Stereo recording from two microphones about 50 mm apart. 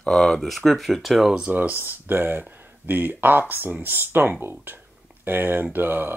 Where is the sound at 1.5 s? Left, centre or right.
Right.